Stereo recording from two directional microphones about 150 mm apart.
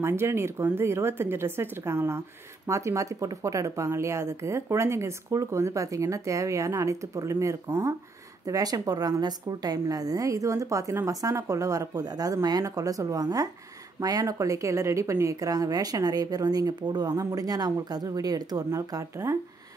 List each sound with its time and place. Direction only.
0.0 s speech: 15° right (ahead or behind)